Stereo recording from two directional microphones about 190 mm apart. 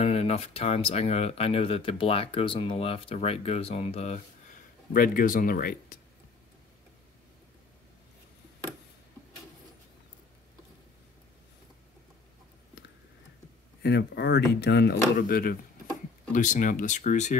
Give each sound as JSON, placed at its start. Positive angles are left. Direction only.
{"t": 0.0, "sound": "speech", "side_deg": 30}
{"t": 4.9, "sound": "speech", "side_deg": 45}
{"t": 13.8, "sound": "speech", "side_deg": 60}